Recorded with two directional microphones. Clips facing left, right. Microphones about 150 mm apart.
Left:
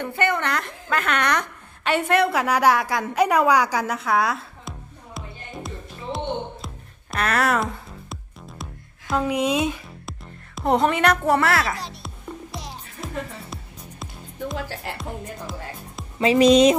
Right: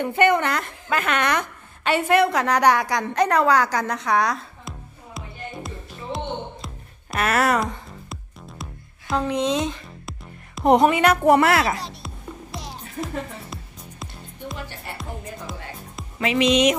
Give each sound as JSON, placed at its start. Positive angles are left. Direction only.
{"t": 0.0, "sound": "a woman's voice", "side_deg": -15}
{"t": 0.4, "sound": "a woman's voice", "side_deg": 0}
{"t": 6.1, "sound": "music", "side_deg": 0}
{"t": 10.6, "sound": "speech", "side_deg": -20}
{"t": 10.9, "sound": "a woman's voice", "side_deg": -5}
{"t": 11.2, "sound": "a woman's voice", "side_deg": -20}
{"t": 11.8, "sound": "a child's voice", "side_deg": 0}
{"t": 12.5, "sound": "music", "side_deg": 0}
{"t": 14.6, "sound": "speech", "side_deg": 90}
{"t": 16.2, "sound": "speech", "side_deg": 30}